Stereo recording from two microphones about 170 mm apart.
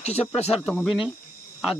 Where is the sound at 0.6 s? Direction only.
Centre (ahead or behind).